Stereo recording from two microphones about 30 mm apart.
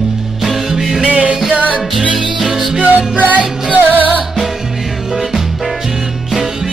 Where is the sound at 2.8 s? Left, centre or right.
Right.